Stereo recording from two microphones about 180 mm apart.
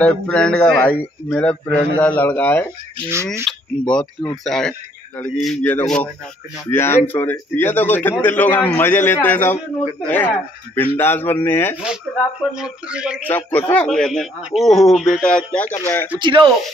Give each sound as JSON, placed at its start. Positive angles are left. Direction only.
{"t": 0.0, "sound": "a man's voice", "side_deg": 5}
{"t": 12.5, "sound": "speech", "side_deg": -5}
{"t": 13.3, "sound": "a man's voice", "side_deg": 10}
{"t": 16.2, "sound": "speech", "side_deg": -25}